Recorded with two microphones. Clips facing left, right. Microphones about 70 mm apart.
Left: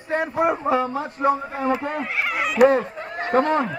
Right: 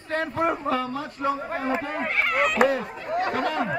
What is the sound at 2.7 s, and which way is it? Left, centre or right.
Speech, left.